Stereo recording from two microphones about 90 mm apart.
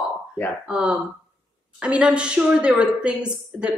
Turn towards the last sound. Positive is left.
turn(degrees=-10)  # may be behind; listen again after turning